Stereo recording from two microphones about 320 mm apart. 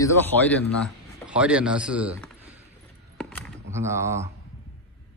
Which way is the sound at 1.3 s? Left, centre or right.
Centre.